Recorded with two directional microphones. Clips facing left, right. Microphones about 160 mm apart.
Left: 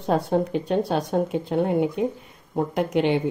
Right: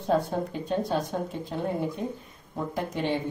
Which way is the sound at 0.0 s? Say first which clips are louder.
Left 4 dB; 70° left (ahead or behind).